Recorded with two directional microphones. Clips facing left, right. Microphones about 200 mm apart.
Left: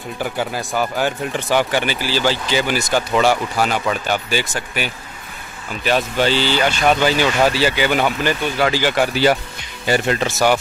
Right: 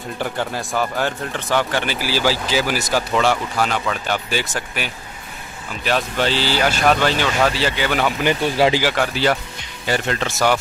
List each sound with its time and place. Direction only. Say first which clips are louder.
0.2 s speech: left 1 dB; 5° left (ahead or behind)
2.0 s speech: left 1 dB; 10° right (ahead or behind)
8.4 s speech: right 2 dB; 30° right (ahead or behind)
8.9 s speech: left 3 dB; 5° left (ahead or behind)